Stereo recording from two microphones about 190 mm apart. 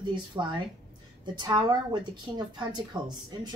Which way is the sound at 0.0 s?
25° right (ahead or behind).